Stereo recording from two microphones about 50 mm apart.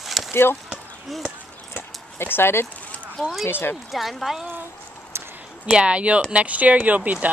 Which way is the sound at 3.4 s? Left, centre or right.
Left.